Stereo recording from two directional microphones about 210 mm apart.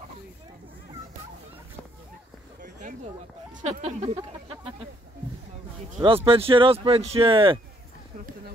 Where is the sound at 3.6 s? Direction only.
35° right (ahead or behind).